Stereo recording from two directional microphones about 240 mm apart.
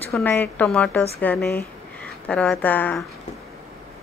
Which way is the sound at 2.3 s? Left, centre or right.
Centre.